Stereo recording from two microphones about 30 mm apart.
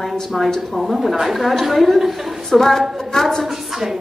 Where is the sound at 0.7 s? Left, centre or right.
Centre.